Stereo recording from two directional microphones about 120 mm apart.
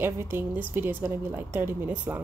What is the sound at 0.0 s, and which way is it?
A woman's voice, 20° right (ahead or behind).